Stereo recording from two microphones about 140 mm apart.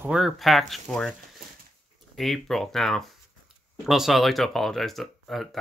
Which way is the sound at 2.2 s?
Centre (ahead or behind).